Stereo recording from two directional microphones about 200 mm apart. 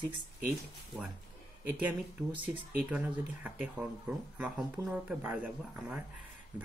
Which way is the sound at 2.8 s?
5° right (ahead or behind).